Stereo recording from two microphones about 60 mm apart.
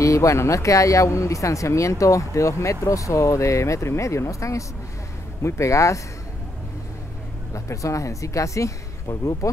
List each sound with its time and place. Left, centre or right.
0.0 s a man's voice: left
7.5 s a man's voice: left